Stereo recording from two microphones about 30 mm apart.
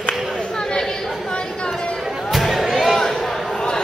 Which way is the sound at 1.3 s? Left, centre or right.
Left.